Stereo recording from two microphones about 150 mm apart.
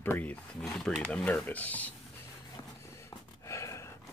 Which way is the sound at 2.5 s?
20° left (ahead or behind).